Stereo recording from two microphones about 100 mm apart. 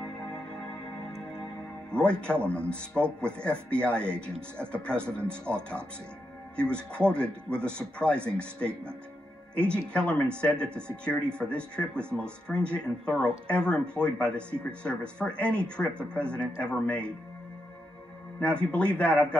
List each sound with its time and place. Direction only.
1.9 s speech: 10° left (ahead or behind)
6.5 s speech: 10° left (ahead or behind)
18.4 s speech: 10° left (ahead or behind)